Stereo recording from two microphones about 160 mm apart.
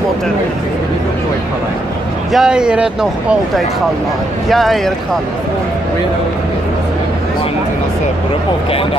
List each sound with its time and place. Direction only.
2.3 s speech: 5° right (ahead or behind)